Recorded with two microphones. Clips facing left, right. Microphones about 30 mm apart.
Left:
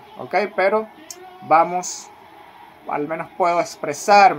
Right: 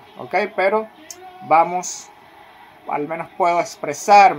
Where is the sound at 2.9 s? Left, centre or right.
Centre.